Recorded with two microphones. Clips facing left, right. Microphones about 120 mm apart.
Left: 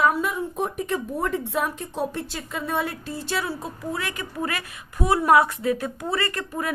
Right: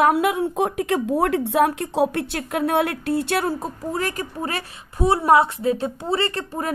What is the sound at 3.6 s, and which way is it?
A woman's voice, 40° right (ahead or behind).